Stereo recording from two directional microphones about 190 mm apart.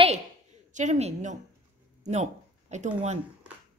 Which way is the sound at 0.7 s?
35° right (ahead or behind).